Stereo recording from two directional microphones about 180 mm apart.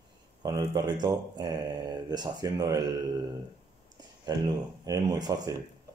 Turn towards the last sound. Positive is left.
turn(degrees=-20)  # may be behind; listen again after turning